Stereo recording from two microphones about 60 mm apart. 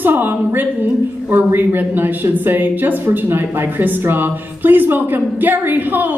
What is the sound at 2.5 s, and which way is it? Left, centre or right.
Speech, right.